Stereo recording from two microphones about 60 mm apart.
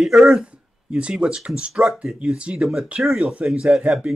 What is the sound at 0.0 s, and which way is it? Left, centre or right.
Speech, centre.